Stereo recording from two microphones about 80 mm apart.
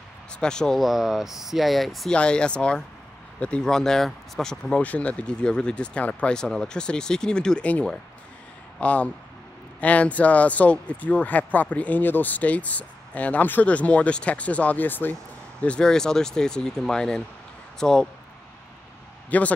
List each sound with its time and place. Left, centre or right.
0.4 s speech: centre
2.1 s speech: centre
15.6 s speech: centre
19.3 s a man's voice: centre